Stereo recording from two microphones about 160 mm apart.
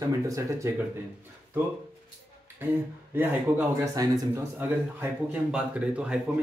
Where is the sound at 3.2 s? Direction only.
15° right (ahead or behind).